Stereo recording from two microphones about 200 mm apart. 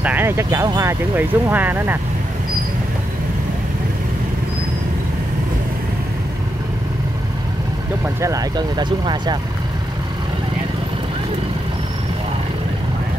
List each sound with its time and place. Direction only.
0.0 s speech: 10° right (ahead or behind)
8.2 s speech: 15° right (ahead or behind)